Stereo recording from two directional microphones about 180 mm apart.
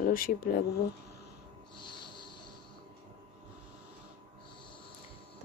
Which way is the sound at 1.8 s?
25° left (ahead or behind).